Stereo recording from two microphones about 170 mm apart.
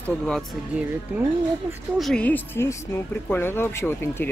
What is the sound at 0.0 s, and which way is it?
Speech, 5° left (ahead or behind).